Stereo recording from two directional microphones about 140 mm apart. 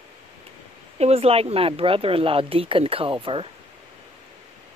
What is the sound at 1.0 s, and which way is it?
Speech, 45° right (ahead or behind).